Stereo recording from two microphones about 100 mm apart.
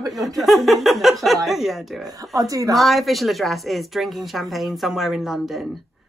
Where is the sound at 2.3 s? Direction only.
35° right (ahead or behind).